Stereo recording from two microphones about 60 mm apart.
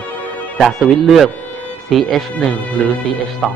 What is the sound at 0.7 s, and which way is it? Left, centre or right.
A man's voice, centre.